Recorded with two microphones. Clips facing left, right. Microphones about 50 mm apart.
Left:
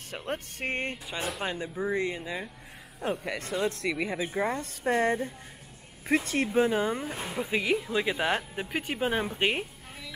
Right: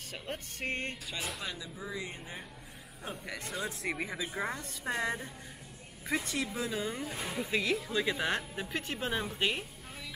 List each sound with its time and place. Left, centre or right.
0.1 s speech: centre
0.7 s speech: left
1.4 s speech: left
3.3 s speech: left
4.8 s speech: left